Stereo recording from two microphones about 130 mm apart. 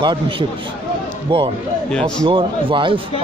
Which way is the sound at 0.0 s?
35° right (ahead or behind).